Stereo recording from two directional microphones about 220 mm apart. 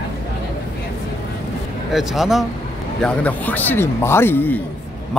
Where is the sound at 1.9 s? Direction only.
Centre (ahead or behind).